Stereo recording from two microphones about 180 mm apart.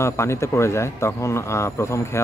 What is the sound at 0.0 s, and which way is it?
Speech, 15° left (ahead or behind).